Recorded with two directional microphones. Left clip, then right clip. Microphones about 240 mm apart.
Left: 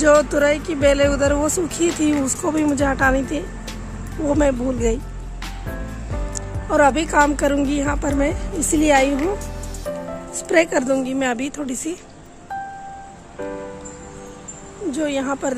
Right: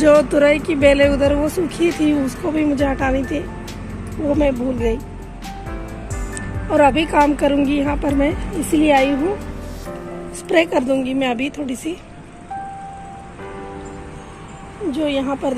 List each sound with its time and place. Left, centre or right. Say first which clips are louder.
0.0 s speech: right 2 dB; centre; by 4.9 s left
6.7 s a woman's voice: right 2 dB; centre
10.5 s a woman's voice: right 1 dB; centre
14.9 s speech: right 2 dB; centre